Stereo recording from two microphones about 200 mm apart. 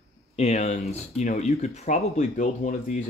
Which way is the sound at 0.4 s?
35° left (ahead or behind).